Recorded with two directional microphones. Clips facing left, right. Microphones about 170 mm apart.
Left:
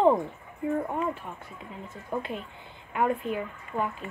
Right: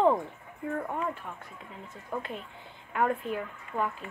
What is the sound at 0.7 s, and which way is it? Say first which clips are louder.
Speech: left 3 dB; 15° left (ahead or behind).